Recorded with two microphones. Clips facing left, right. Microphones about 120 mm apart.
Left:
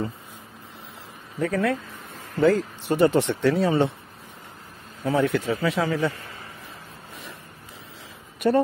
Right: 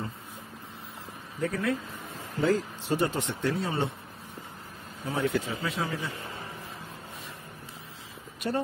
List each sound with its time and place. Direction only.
1.4 s speech: 80° left
2.4 s speech: 65° left (ahead or behind); by 3.9 s 90° left
5.1 s speech: 80° left
8.4 s speech: 70° left (ahead or behind)